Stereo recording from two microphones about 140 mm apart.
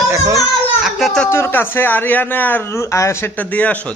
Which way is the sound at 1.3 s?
15° left (ahead or behind).